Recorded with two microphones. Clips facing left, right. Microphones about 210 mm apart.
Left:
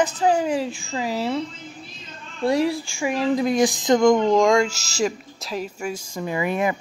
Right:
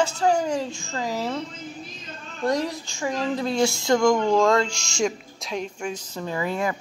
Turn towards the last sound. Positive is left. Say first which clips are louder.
# left 3 dB
turn(degrees=15)  # may be behind; listen again after turning